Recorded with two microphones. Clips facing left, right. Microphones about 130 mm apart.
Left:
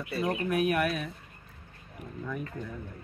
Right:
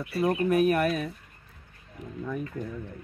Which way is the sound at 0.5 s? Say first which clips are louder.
Right 3 dB; 35° right (ahead or behind).